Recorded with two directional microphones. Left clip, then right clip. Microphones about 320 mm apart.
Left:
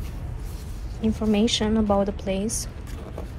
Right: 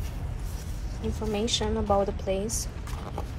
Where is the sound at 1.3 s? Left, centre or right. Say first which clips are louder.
Left 4 dB; left.